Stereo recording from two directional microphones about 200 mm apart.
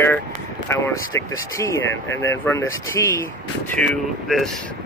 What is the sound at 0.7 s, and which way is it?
Speech, 15° left (ahead or behind).